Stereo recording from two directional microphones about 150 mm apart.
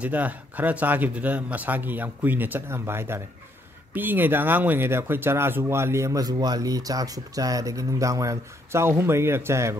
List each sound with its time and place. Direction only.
0.0 s speech: 10° right (ahead or behind)